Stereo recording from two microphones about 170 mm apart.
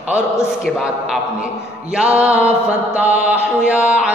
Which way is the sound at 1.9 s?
5° right (ahead or behind).